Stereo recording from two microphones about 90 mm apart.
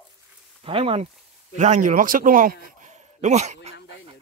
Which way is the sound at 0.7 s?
90° right.